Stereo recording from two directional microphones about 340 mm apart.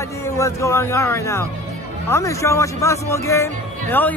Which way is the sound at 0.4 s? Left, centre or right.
Centre.